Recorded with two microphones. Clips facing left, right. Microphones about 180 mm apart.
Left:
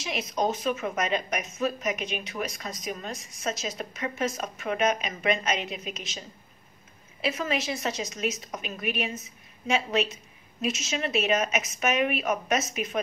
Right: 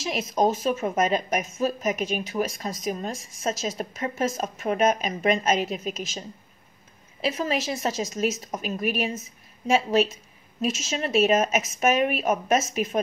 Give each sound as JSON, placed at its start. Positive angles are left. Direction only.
{"t": 0.0, "sound": "speech", "side_deg": -35}
{"t": 7.2, "sound": "speech", "side_deg": -35}